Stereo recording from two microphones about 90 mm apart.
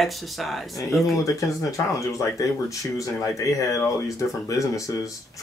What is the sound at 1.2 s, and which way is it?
Speech, 40° left (ahead or behind).